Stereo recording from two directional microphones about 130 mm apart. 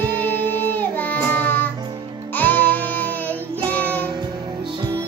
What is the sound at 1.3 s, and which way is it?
Music, 15° left (ahead or behind).